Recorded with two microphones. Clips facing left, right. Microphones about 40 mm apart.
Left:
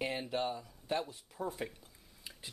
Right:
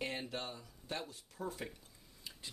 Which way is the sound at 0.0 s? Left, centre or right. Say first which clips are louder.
Left 6 dB; centre.